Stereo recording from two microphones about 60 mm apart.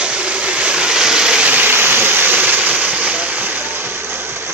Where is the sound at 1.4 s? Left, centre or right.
Right.